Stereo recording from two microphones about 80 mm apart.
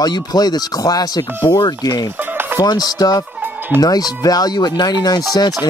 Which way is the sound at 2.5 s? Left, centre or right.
Left.